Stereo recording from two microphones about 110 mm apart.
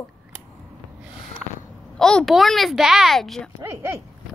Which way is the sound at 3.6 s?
20° right (ahead or behind).